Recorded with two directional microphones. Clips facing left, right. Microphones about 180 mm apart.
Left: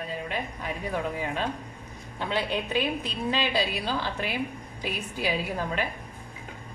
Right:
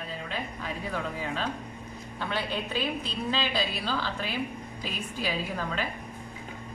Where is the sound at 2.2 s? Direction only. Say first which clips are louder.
Left 3 dB; 15° left (ahead or behind).